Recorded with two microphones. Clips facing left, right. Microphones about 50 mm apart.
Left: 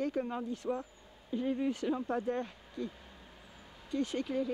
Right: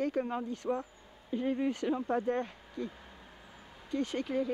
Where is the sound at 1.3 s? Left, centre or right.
Centre.